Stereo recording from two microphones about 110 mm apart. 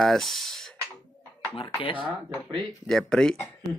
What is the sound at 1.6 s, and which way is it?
Speech, 50° left (ahead or behind).